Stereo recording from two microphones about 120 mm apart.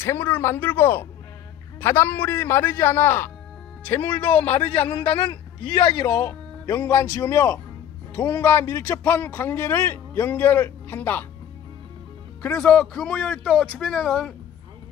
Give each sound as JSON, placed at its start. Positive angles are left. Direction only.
{"t": 0.0, "sound": "speech", "side_deg": 20}
{"t": 5.1, "sound": "speech", "side_deg": 45}
{"t": 12.4, "sound": "speech", "side_deg": 10}